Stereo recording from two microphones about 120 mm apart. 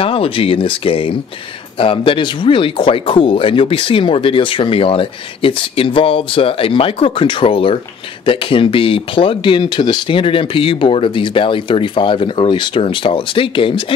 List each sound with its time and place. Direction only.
0.0 s speech: 50° left (ahead or behind)